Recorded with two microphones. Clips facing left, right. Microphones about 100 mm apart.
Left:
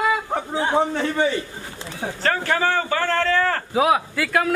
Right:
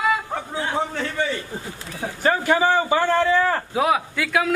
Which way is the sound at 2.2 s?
15° right (ahead or behind).